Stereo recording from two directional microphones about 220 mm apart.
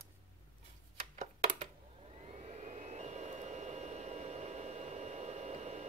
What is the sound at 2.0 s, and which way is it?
Vehicle, 25° right (ahead or behind).